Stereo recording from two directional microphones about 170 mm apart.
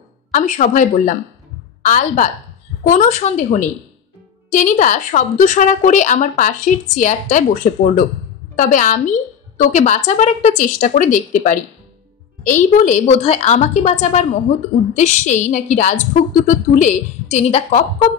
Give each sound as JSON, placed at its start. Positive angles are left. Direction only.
{"t": 0.3, "sound": "a woman's voice", "side_deg": 50}